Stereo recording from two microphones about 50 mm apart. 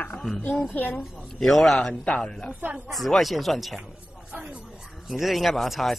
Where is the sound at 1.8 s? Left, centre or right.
Centre.